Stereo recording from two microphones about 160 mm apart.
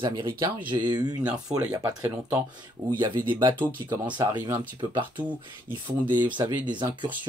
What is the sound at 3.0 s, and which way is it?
Speech, 25° right (ahead or behind).